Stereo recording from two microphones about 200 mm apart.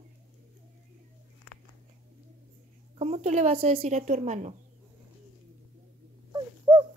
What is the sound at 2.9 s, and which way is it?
A woman's voice, 30° right (ahead or behind).